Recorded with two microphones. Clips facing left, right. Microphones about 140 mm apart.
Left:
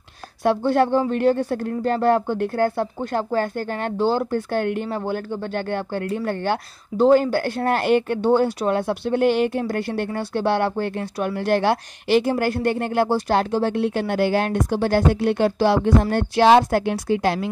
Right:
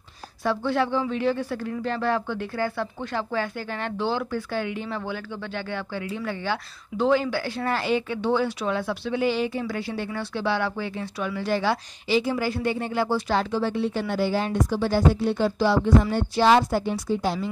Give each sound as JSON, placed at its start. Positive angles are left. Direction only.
{"t": 0.7, "sound": "speech", "side_deg": 50}
{"t": 4.8, "sound": "speech", "side_deg": 45}